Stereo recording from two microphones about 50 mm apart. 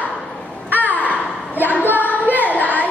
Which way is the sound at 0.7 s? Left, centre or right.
Left.